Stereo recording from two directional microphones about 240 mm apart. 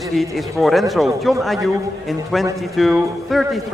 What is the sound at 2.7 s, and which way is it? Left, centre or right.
Speech, centre.